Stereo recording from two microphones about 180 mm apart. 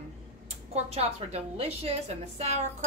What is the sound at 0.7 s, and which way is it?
A woman's voice, 35° right (ahead or behind).